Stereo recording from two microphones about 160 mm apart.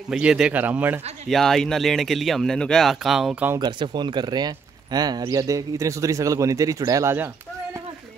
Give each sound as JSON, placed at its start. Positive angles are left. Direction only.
{"t": 0.1, "sound": "speech", "side_deg": -5}
{"t": 1.3, "sound": "speech", "side_deg": 0}
{"t": 3.5, "sound": "speech", "side_deg": -30}